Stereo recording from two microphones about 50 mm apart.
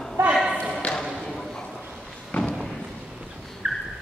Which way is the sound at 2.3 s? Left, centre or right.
Left.